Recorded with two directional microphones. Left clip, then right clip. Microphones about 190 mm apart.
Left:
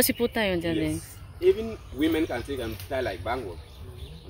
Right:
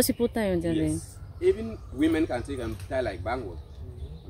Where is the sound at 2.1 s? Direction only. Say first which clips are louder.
Even; 10° right (ahead or behind).